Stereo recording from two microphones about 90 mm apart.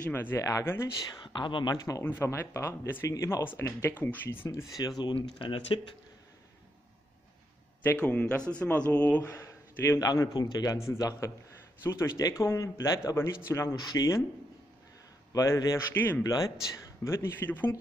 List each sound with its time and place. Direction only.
0.1 s speech: 25° left (ahead or behind)
0.4 s speech: 35° left (ahead or behind)
1.1 s speech: 55° left (ahead or behind)
2.0 s speech: 25° left (ahead or behind)
3.4 s speech: 30° left (ahead or behind)
4.5 s a man's voice: 35° left (ahead or behind)
5.1 s speech: 85° left
7.8 s speech: 20° left (ahead or behind)
9.3 s a sound: 30° left (ahead or behind)
9.9 s a man's voice: 40° left (ahead or behind)
15.3 s speech: 35° left (ahead or behind)
15.9 s speech: 25° left (ahead or behind)
16.2 s a man's voice: 45° left (ahead or behind)
17.0 s speech: 30° left (ahead or behind)